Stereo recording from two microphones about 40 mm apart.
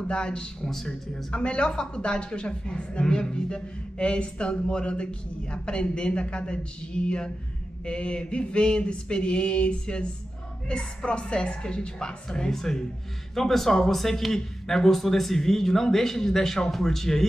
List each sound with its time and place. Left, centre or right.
0.1 s a woman's voice: left
1.4 s a woman's voice: left; by 17.3 s centre